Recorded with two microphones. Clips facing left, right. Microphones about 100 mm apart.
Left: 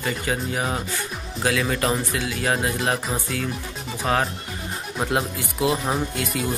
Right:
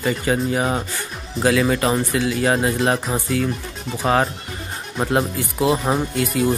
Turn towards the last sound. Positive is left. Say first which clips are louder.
# right 6 dB
turn(degrees=0)  # may be behind; listen again after turning